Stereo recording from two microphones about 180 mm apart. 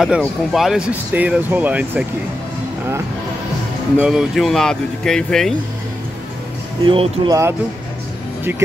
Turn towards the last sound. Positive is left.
turn(degrees=-15)  # may be behind; listen again after turning